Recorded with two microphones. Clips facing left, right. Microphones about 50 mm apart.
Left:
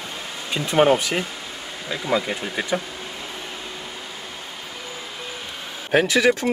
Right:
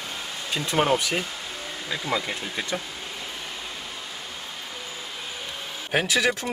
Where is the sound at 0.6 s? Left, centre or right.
Left.